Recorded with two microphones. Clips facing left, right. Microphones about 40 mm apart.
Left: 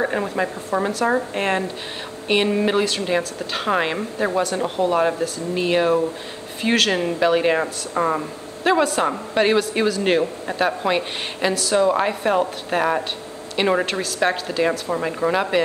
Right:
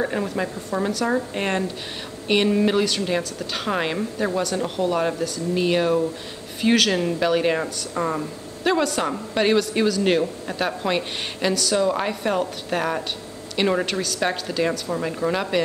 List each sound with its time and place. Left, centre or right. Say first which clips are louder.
0.0 s a woman's voice: left 2 dB; centre
7.2 s a woman's voice: left 5 dB; centre